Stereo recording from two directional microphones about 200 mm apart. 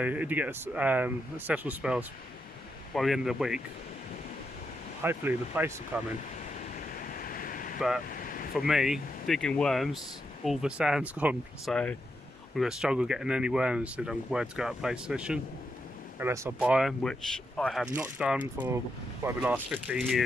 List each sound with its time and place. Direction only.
0.0 s speech: 5° right (ahead or behind)
5.0 s speech: 10° right (ahead or behind)
6.7 s waves: 45° left (ahead or behind)
8.1 s a sound: 45° left (ahead or behind)
8.5 s speech: centre (ahead or behind)
11.7 s speech: 5° left (ahead or behind)